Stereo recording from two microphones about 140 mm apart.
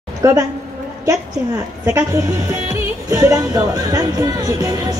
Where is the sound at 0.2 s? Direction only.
20° right (ahead or behind).